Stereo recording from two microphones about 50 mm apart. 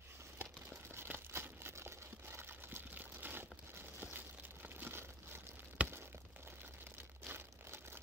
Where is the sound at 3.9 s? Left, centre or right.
Right.